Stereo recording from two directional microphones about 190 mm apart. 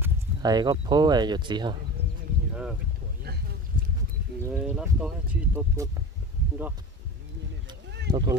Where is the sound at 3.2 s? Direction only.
55° right (ahead or behind).